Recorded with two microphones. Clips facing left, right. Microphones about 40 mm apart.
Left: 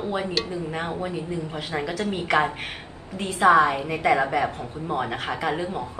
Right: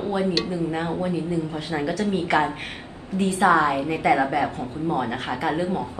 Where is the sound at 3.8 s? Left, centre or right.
Centre.